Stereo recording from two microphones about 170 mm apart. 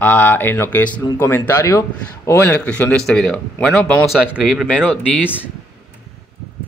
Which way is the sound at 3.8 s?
15° left (ahead or behind).